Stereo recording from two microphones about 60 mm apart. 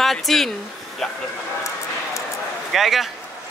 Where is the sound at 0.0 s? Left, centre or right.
Centre.